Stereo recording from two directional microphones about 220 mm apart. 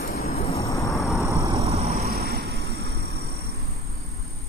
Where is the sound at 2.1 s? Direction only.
45° right (ahead or behind).